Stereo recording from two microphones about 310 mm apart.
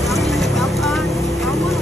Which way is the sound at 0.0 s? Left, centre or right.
Centre.